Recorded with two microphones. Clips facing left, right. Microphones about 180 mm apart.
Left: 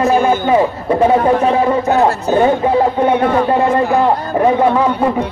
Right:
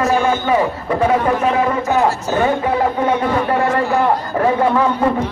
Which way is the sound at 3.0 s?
60° left (ahead or behind).